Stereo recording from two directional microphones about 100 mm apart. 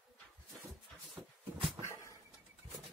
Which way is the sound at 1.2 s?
5° left (ahead or behind).